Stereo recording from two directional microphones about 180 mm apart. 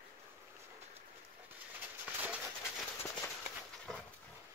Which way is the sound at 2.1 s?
10° right (ahead or behind).